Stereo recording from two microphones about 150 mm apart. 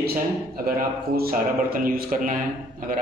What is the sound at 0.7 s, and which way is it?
A man's voice, 80° right.